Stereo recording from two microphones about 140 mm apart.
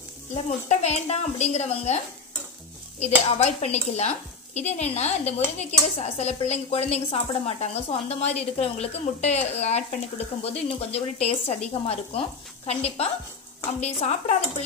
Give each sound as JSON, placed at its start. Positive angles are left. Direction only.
{"t": 0.3, "sound": "speech", "side_deg": 55}
{"t": 3.0, "sound": "speech", "side_deg": 50}